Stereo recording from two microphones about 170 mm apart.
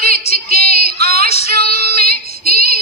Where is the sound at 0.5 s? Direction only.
60° right (ahead or behind).